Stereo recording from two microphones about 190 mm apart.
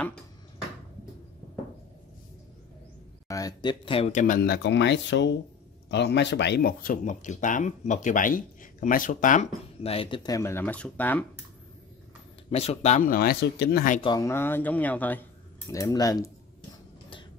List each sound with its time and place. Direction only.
3.3 s speech: 20° left (ahead or behind)
4.2 s speech: 45° left (ahead or behind)
4.6 s speech: 70° left (ahead or behind); by 11.2 s 10° left (ahead or behind)
12.4 s speech: 35° left (ahead or behind); by 13.8 s 60° left (ahead or behind)
14.0 s speech: 15° left (ahead or behind)